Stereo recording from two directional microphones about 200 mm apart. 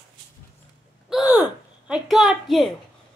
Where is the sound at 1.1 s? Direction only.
5° right (ahead or behind).